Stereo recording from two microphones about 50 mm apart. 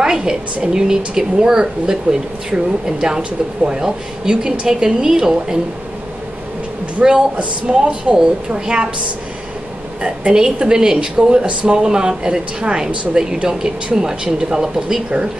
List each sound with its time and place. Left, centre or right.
0.0 s speech: centre
7.0 s speech: centre
10.0 s speech: centre